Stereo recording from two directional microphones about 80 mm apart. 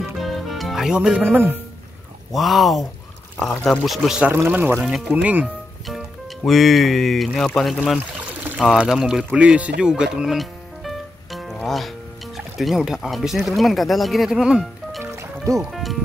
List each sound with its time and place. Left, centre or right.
0.2 s music: centre
0.9 s speech: centre
1.3 s speech: right
2.3 s speech: centre
4.5 s speech: centre
5.9 s speech: centre
9.3 s music: centre
11.6 s speech: centre
15.1 s music: right
15.7 s speech: centre